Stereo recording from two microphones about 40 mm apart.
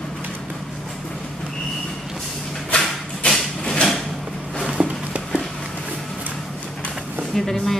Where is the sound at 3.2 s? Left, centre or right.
Left.